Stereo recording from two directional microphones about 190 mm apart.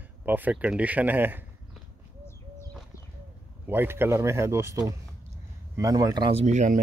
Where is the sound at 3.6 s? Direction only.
10° right (ahead or behind).